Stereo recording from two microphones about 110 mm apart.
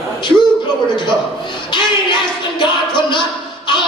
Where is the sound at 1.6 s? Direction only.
45° left (ahead or behind).